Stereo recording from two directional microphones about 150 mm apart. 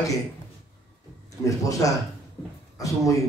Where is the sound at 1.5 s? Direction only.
20° left (ahead or behind).